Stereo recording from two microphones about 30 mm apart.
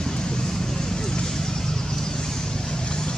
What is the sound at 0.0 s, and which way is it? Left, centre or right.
Vehicle, left.